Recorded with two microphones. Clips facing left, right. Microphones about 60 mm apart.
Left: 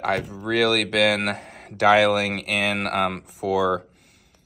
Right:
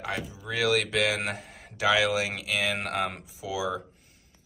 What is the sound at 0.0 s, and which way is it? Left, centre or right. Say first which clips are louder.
Speech: left 9 dB; left.